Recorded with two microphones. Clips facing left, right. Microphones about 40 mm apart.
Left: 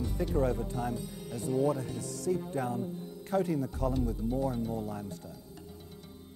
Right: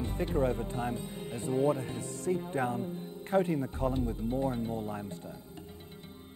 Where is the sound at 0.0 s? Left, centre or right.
Right.